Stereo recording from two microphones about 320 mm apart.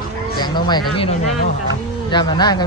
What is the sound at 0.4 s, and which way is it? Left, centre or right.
Speech, centre.